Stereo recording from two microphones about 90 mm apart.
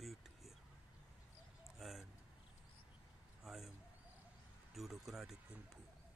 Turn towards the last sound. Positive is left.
turn(degrees=-5)  # may be behind; listen again after turning